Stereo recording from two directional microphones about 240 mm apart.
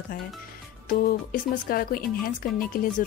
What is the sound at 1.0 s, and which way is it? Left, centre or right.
Speech, left.